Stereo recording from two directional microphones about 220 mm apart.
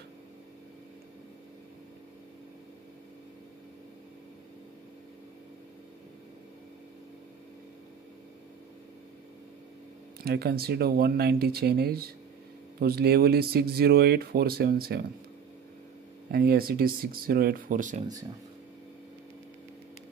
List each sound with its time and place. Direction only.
10.2 s speech: 45° right (ahead or behind)
16.3 s speech: 45° right (ahead or behind)